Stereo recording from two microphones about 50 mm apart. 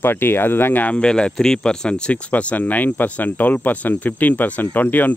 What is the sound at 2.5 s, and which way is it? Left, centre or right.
Speech, left.